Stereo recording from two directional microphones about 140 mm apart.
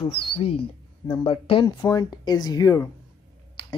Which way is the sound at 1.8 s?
25° left (ahead or behind).